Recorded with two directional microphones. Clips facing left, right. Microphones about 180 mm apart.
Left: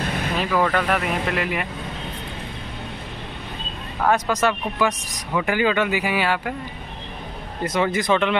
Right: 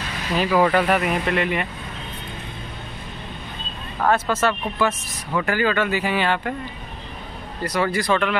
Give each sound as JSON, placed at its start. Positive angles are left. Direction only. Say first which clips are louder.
{"t": 0.0, "sound": "vehicle", "louder": "left 6 dB", "side_deg": 55}
{"t": 0.4, "sound": "speech", "louder": "right 4 dB", "side_deg": -10}
{"t": 4.1, "sound": "speech", "louder": "even", "side_deg": 15}
{"t": 7.6, "sound": "speech", "louder": "left 1 dB", "side_deg": 20}